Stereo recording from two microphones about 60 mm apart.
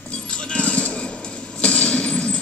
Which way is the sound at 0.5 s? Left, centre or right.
Centre.